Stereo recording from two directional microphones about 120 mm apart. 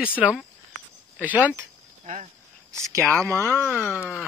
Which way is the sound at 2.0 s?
70° right (ahead or behind).